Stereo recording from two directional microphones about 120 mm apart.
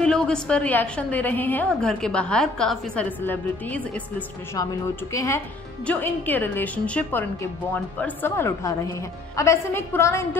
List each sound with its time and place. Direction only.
0.0 s a woman's voice: 5° left (ahead or behind)
3.2 s a woman's voice: 15° left (ahead or behind)
4.6 s a woman's voice: 25° left (ahead or behind)